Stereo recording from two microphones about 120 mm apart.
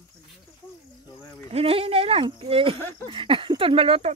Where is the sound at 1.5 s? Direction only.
55° right (ahead or behind).